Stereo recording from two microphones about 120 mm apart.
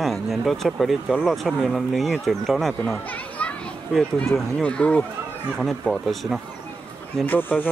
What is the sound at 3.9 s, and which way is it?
Speech, 5° left (ahead or behind).